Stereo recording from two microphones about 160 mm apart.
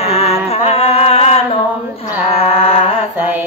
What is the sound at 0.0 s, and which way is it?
Music, 40° left (ahead or behind).